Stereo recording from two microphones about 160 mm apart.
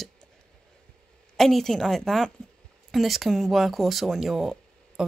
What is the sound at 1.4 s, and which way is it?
Speech, centre (ahead or behind).